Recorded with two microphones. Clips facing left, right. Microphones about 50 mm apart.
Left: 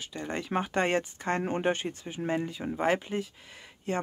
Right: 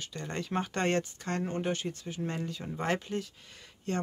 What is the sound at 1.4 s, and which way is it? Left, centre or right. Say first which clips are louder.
Speech: left 2 dB; left.